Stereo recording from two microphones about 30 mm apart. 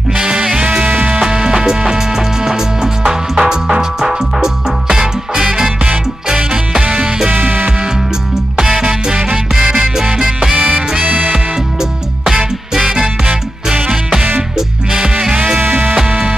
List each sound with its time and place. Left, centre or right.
0.2 s music: right
0.8 s music: right
1.2 s music: right
6.8 s music: right
8.5 s music: centre
8.8 s music: right
10.5 s music: right
11.3 s music: centre
14.9 s music: right
15.3 s music: right
15.6 s music: right